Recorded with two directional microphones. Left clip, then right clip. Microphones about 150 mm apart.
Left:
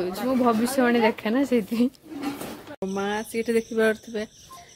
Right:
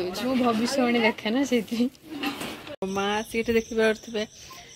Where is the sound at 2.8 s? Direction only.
5° left (ahead or behind).